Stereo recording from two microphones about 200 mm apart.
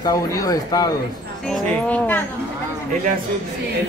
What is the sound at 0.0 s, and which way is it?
Speech, 15° left (ahead or behind).